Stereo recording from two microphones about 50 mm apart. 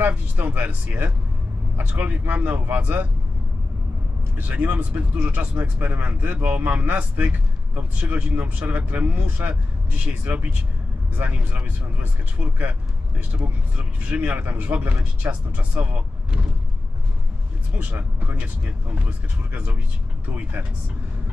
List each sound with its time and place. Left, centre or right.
0.0 s speech: right
4.4 s speech: right
13.7 s speech: right
17.7 s speech: right
20.2 s speech: right